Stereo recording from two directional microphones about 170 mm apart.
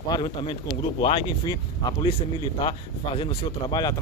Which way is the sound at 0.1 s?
30° left (ahead or behind).